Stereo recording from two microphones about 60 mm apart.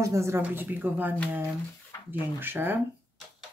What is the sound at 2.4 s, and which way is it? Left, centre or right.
Speech, right.